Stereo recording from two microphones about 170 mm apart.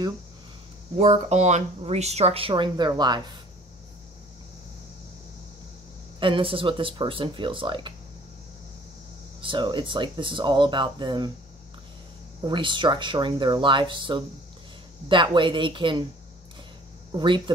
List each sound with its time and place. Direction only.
0.9 s speech: 40° right (ahead or behind)
6.1 s speech: 30° right (ahead or behind)
9.4 s speech: 30° right (ahead or behind)
12.4 s speech: 30° right (ahead or behind)
17.1 s speech: 30° right (ahead or behind)